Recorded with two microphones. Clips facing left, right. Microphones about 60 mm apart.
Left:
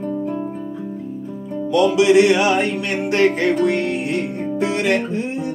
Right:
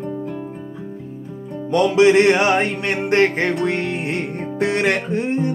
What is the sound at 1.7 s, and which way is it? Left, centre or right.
Music, right.